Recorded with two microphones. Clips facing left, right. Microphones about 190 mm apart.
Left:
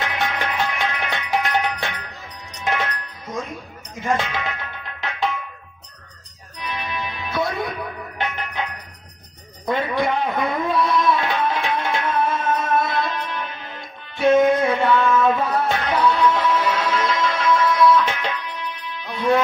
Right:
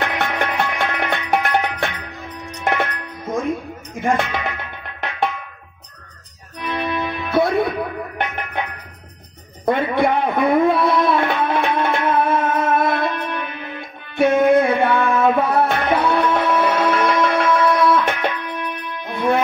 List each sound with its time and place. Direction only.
0.0 s music: 60° right (ahead or behind)
4.0 s speech: 55° right (ahead or behind)
6.6 s music: 60° right (ahead or behind)
9.7 s music: 60° right (ahead or behind)